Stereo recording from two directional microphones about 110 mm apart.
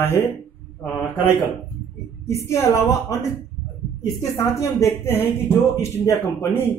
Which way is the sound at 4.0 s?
30° left (ahead or behind).